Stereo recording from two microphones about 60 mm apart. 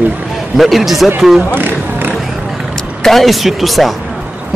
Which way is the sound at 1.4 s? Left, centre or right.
Right.